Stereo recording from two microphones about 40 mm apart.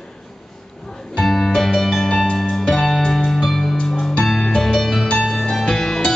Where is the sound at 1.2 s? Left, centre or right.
Centre.